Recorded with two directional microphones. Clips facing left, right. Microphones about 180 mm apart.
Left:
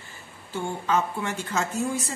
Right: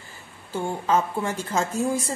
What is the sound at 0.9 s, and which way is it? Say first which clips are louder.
Speech: right 3 dB; 35° right (ahead or behind).